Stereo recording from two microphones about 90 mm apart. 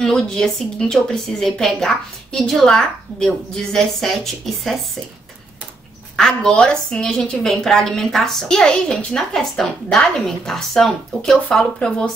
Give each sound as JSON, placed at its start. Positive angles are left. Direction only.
{"t": 0.0, "sound": "a woman's voice", "side_deg": 5}
{"t": 6.1, "sound": "a woman's voice", "side_deg": 5}